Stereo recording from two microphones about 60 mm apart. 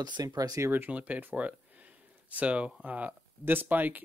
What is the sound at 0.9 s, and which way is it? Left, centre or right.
Speech, right.